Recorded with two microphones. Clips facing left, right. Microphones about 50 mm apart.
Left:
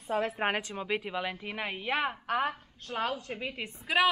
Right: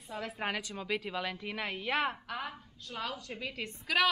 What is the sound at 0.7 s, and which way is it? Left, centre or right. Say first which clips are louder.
Speech: left 3 dB; left.